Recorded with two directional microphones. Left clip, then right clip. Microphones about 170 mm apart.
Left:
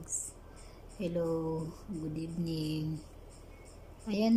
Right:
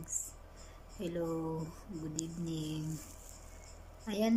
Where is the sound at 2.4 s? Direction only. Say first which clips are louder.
Left 6 dB; 60° left (ahead or behind).